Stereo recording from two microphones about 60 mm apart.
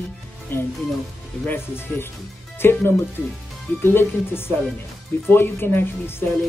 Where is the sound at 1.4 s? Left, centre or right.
Left.